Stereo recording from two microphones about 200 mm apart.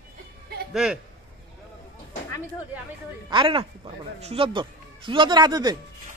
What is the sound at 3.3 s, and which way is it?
Speech, 25° right (ahead or behind).